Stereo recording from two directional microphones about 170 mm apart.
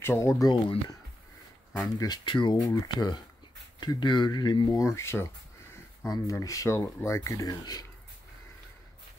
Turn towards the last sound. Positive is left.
turn(degrees=20)  # may be behind; listen again after turning